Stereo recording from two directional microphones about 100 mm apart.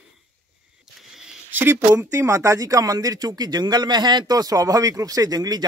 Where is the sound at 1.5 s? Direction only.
20° right (ahead or behind).